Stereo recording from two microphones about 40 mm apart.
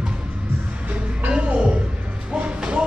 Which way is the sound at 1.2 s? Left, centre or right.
Right.